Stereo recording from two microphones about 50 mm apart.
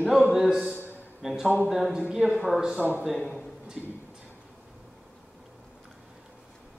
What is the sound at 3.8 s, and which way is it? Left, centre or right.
Speech, centre.